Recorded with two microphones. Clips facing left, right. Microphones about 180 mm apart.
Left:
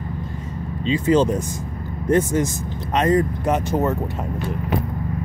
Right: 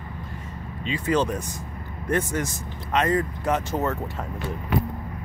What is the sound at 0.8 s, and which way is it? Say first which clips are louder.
Speech: left 6 dB; 25° left (ahead or behind).